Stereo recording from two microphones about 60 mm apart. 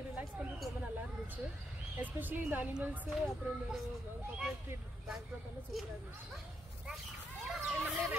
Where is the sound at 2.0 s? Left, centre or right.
Right.